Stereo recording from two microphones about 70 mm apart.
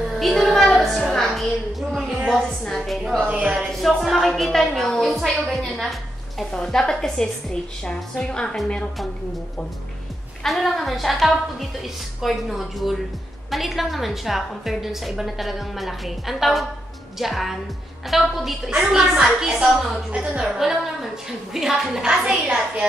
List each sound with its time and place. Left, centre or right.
0.1 s music: centre
1.1 s a sound: centre
2.7 s a woman's voice: centre
3.3 s a sound: centre
3.6 s a woman's voice: centre
10.4 s a woman's voice: centre